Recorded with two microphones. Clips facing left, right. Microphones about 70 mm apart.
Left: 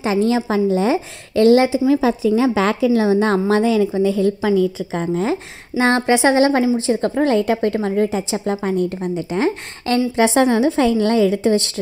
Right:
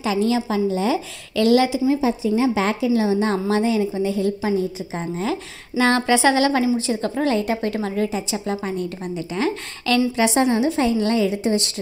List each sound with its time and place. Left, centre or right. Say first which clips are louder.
0.1 s a woman's voice: left 3 dB; left
1.3 s a woman's voice: left 4 dB; left
1.9 s a woman's voice: left 4 dB; left
5.3 s a woman's voice: left 3 dB; left
9.0 s a woman's voice: left 4 dB; left
10.1 s a woman's voice: left 4 dB; left